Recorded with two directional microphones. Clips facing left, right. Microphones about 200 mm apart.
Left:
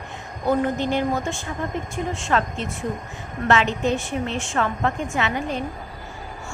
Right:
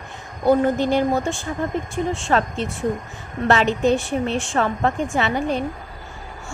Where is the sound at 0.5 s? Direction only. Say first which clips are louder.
Right 4 dB; 35° right (ahead or behind).